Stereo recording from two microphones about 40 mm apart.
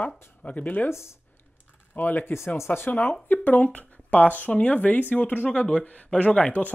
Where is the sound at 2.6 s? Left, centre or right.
Left.